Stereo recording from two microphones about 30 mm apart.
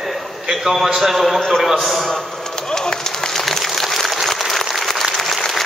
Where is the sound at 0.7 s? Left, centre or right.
Centre.